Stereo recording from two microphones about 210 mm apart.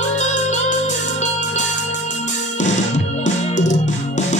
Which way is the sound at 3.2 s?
35° left (ahead or behind).